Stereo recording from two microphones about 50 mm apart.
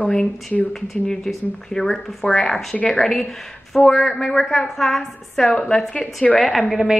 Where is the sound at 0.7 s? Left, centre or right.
Centre.